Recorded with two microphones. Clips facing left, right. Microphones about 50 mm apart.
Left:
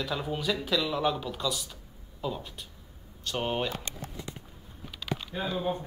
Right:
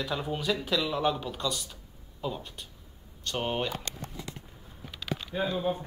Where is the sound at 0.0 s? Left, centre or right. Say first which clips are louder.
Even; centre.